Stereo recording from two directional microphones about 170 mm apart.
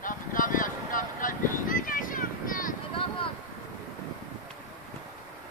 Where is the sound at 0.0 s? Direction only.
50° left (ahead or behind).